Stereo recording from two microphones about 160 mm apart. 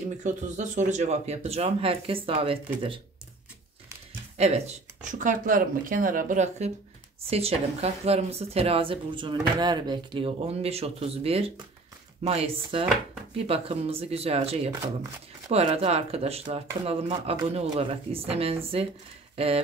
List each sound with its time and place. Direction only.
0.2 s speech: 50° right (ahead or behind)
4.4 s speech: 40° right (ahead or behind)
5.2 s speech: 55° right (ahead or behind); by 19.6 s 40° right (ahead or behind)